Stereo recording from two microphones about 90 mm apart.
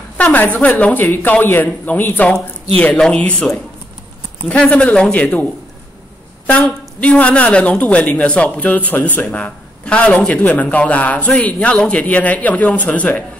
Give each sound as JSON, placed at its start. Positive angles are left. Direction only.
{"t": 0.2, "sound": "speech", "side_deg": 20}
{"t": 7.0, "sound": "speech", "side_deg": 15}